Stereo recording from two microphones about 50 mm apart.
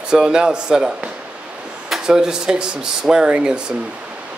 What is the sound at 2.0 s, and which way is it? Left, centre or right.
Speech, centre.